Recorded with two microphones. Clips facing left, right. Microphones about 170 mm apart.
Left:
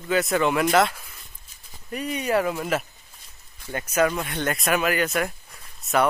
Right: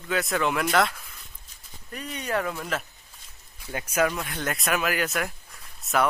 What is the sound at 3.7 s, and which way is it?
Speech, 5° right (ahead or behind).